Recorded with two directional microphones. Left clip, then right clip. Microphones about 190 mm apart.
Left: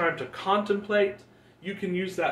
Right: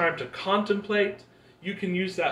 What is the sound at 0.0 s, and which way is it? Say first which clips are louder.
Speech: right 1 dB; 25° left (ahead or behind).